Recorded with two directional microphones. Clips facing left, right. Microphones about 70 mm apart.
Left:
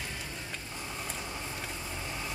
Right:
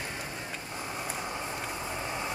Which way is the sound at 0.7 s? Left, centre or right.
Right.